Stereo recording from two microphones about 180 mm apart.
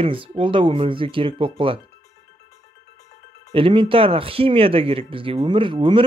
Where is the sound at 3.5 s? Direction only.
30° right (ahead or behind).